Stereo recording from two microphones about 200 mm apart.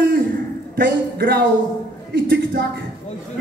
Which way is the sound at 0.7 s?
50° right (ahead or behind).